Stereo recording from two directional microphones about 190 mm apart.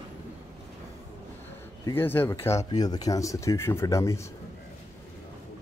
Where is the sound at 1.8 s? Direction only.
10° left (ahead or behind).